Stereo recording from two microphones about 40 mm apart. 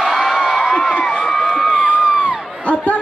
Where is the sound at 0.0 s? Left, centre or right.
Centre.